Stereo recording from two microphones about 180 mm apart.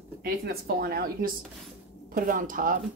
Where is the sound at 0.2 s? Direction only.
55° right (ahead or behind).